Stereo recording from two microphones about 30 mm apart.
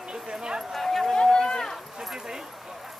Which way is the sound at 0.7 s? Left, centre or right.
Centre.